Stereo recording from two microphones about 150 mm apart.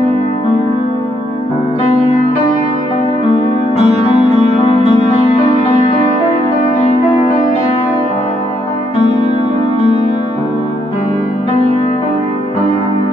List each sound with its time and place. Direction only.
3.7 s music: 50° right (ahead or behind)